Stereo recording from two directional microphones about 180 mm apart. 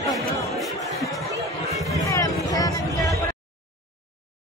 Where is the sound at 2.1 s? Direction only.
20° left (ahead or behind).